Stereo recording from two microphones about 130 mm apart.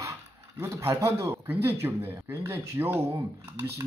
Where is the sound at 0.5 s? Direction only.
25° right (ahead or behind).